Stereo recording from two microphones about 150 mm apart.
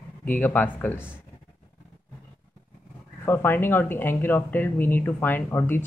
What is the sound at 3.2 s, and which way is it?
Speech, 15° left (ahead or behind).